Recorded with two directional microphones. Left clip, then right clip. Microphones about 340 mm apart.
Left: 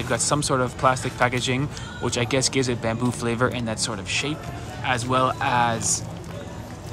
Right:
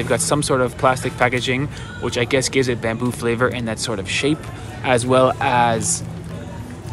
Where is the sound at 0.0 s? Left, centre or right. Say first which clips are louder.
Right 4 dB; centre.